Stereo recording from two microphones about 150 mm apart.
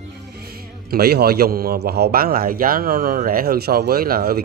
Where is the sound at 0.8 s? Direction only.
90° right.